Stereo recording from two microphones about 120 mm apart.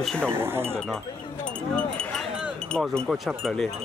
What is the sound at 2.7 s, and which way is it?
Speech, 5° left (ahead or behind).